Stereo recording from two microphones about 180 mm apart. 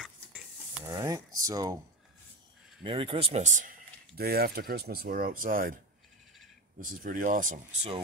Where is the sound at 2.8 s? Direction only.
30° right (ahead or behind); by 3.7 s 45° right (ahead or behind).